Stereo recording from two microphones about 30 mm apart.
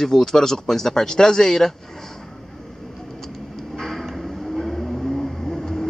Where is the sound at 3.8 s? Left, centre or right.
Centre.